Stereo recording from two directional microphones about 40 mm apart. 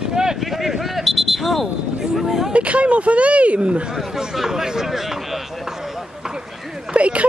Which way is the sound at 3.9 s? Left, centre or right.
Centre.